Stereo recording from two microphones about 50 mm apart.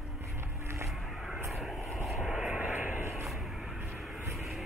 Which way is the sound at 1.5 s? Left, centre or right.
Centre.